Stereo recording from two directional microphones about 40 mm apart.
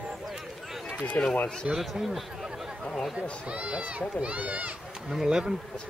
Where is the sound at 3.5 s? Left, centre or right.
Right.